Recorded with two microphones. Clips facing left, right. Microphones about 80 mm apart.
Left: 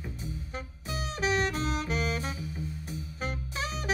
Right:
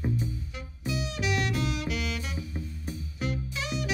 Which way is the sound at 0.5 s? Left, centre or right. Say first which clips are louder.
Right 4 dB; left.